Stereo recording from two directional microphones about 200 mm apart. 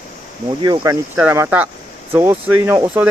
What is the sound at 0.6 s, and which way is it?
Speech, 20° right (ahead or behind).